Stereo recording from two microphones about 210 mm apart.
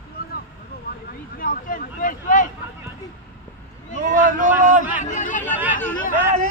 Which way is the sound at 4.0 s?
40° right (ahead or behind).